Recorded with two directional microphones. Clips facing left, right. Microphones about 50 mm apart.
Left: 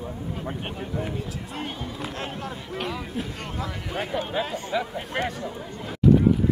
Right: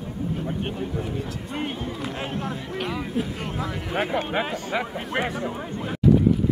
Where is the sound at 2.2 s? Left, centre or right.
Centre.